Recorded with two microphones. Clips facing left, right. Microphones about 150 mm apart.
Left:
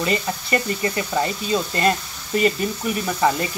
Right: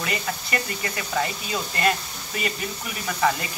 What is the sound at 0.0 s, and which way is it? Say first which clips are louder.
Speech: left 6 dB; 30° left (ahead or behind).